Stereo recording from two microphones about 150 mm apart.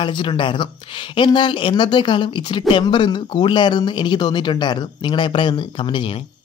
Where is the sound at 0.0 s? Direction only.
35° left (ahead or behind).